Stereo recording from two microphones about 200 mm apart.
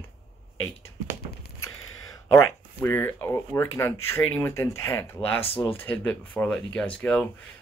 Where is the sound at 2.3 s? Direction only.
15° left (ahead or behind).